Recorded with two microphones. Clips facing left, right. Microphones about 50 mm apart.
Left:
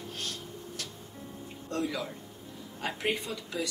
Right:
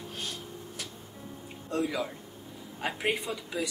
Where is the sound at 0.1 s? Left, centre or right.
Centre.